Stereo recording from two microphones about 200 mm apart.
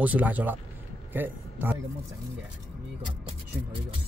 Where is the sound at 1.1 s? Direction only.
10° right (ahead or behind).